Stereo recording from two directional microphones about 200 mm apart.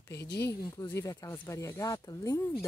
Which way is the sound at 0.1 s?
55° left (ahead or behind).